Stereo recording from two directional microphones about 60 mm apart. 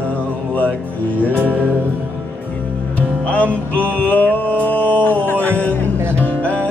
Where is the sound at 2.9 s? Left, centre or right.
Left.